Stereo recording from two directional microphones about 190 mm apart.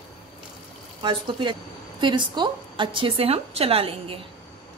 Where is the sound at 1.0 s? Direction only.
25° right (ahead or behind).